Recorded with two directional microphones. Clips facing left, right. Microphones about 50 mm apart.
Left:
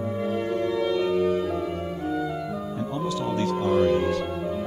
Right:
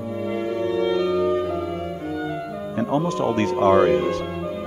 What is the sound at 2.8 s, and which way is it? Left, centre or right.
Speech, right.